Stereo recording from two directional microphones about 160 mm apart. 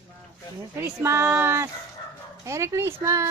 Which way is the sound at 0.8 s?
15° right (ahead or behind).